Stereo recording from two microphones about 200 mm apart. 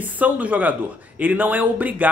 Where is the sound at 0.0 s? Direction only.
10° right (ahead or behind).